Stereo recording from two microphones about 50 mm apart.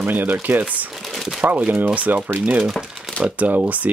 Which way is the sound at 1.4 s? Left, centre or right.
Right.